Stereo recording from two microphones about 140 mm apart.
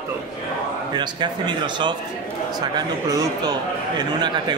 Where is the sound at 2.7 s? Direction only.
30° right (ahead or behind).